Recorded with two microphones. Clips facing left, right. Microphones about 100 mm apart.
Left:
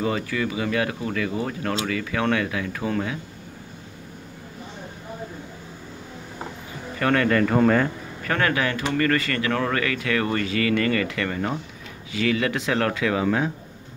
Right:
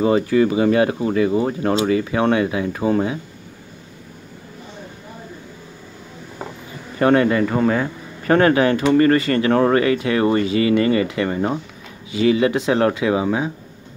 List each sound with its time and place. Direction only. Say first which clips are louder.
0.0 s speech: right 9 dB; 30° right (ahead or behind)
7.0 s speech: right 6 dB; 20° right (ahead or behind)
7.3 s speech: right 1 dB; 5° right (ahead or behind)
8.2 s speech: right 9 dB; 30° right (ahead or behind); by 13.5 s 15° right (ahead or behind)